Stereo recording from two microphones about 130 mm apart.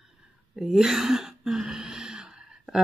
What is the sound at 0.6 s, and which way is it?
Speech, 5° right (ahead or behind).